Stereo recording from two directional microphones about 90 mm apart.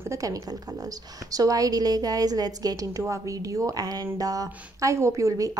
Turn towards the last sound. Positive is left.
turn(degrees=-40)  # may be behind; listen again after turning